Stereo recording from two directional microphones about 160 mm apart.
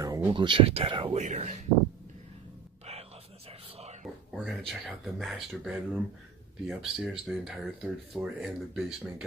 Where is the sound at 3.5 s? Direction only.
40° right (ahead or behind).